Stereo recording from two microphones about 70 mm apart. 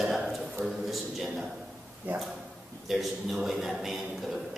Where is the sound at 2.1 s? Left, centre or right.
Right.